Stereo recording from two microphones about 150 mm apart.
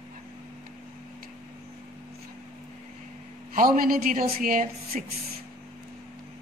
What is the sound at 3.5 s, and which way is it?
A woman's voice, 65° right (ahead or behind).